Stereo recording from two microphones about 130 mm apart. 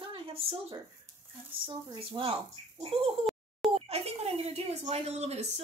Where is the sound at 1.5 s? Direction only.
45° right (ahead or behind).